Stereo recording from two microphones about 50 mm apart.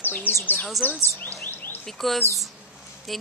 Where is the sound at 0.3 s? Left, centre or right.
Right.